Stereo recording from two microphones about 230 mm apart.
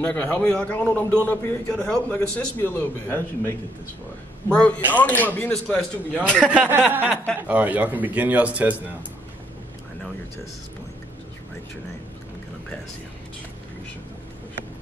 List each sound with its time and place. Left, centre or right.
0.0 s a man's voice: centre